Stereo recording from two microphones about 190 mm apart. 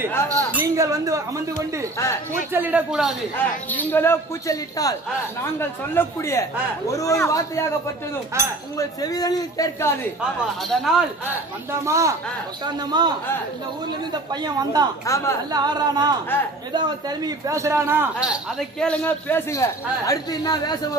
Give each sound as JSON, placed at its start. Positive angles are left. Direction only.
{"t": 0.3, "sound": "a man's voice", "side_deg": -15}
{"t": 3.3, "sound": "speech", "side_deg": 10}
{"t": 8.3, "sound": "speech", "side_deg": -15}
{"t": 8.7, "sound": "a man's voice", "side_deg": 20}
{"t": 10.7, "sound": "a man's voice", "side_deg": 0}
{"t": 11.8, "sound": "speech", "side_deg": -15}
{"t": 14.3, "sound": "speech", "side_deg": -20}
{"t": 15.0, "sound": "speech", "side_deg": 15}
{"t": 15.5, "sound": "a man's voice", "side_deg": -20}